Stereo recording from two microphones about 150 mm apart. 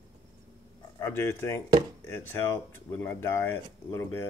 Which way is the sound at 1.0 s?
15° left (ahead or behind).